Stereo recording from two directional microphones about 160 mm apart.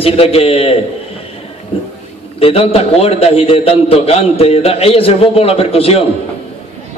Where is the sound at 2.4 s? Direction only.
35° left (ahead or behind).